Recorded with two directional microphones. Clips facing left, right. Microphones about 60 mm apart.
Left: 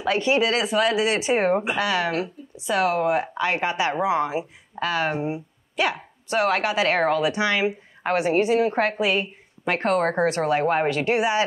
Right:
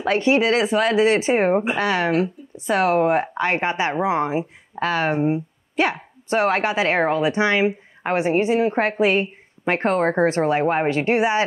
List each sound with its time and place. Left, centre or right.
0.0 s speech: right
9.0 s speech: right